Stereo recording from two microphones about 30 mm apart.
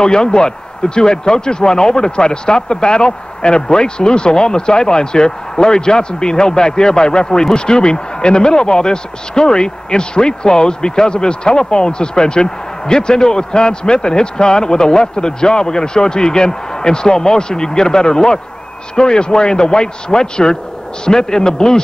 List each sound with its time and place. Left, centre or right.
0.0 s speech: left